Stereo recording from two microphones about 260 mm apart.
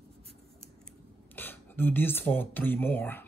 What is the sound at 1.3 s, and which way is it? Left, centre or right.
Speech, centre.